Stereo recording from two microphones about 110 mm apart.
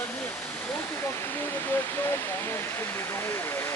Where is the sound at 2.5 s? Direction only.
20° left (ahead or behind).